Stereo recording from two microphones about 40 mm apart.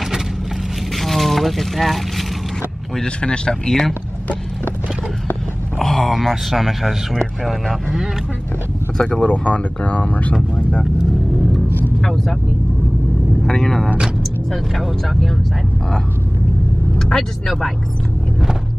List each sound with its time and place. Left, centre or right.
0.9 s vehicle: centre
3.0 s speech: left
5.8 s speech: centre
8.9 s speech: centre
9.3 s speech: left
12.0 s speech: centre
13.5 s speech: centre
14.5 s speech: centre
17.0 s speech: centre